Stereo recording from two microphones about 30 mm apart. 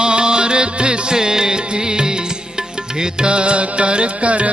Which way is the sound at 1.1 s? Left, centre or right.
Right.